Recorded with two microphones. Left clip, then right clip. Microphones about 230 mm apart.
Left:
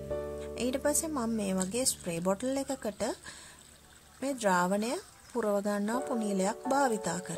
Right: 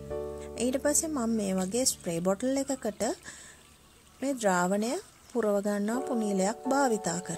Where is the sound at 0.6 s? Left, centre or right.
Centre.